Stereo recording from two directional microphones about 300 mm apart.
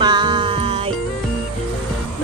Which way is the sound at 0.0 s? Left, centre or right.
Centre.